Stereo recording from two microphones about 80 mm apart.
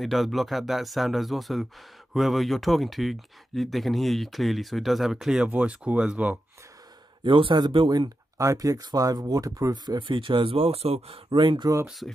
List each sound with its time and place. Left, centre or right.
0.0 s speech: centre
7.2 s speech: right
8.4 s speech: right
9.8 s speech: right